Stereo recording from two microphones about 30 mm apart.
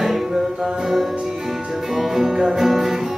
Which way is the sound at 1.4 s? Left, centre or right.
Centre.